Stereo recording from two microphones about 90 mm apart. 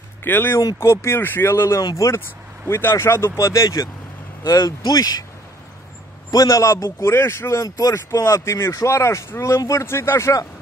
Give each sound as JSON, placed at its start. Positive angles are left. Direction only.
{"t": 0.2, "sound": "speech", "side_deg": 25}
{"t": 1.8, "sound": "a man's voice", "side_deg": 40}
{"t": 6.3, "sound": "a man's voice", "side_deg": 35}